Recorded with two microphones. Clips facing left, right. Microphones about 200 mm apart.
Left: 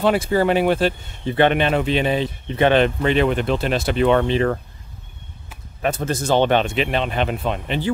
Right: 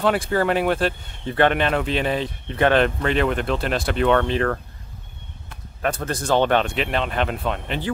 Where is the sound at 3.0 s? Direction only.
5° left (ahead or behind).